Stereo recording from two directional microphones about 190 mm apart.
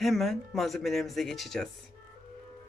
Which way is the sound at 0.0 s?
Centre (ahead or behind).